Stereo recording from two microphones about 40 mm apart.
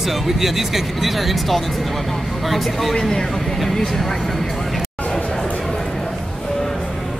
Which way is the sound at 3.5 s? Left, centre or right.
Centre.